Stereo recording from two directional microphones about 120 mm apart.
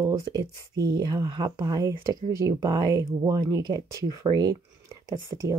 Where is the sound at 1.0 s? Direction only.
35° right (ahead or behind).